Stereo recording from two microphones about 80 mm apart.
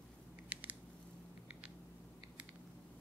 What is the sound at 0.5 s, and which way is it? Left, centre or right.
Scissors, centre.